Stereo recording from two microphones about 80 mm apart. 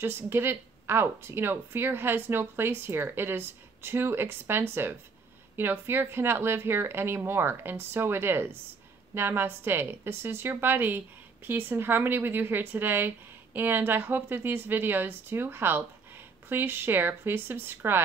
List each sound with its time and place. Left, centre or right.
0.0 s a woman's voice: right